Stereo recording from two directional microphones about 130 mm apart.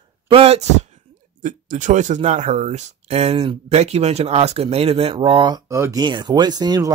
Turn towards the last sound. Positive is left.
turn(degrees=-30)  # may be behind; listen again after turning